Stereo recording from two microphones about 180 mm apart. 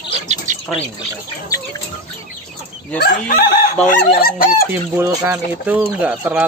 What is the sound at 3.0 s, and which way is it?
Speech, 55° left (ahead or behind).